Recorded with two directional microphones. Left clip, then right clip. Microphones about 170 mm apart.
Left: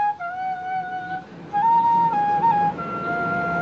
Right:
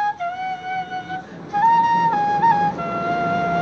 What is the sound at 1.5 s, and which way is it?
Flute, 35° right (ahead or behind).